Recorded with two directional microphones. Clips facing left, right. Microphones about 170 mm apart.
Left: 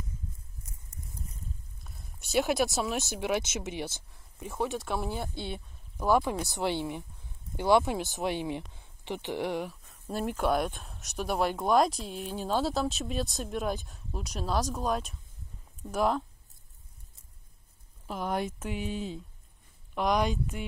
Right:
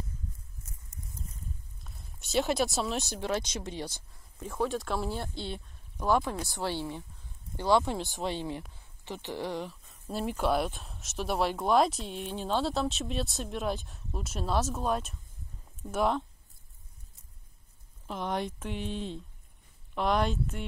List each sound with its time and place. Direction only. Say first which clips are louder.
1.9 s speech: left 1 dB; centre (ahead or behind)
4.4 s speech: right 1 dB; 15° left (ahead or behind)
8.4 s speech: left 2 dB; 15° left (ahead or behind)
9.8 s speech: left 1 dB; centre (ahead or behind)
18.0 s speech: left 1 dB; 5° left (ahead or behind)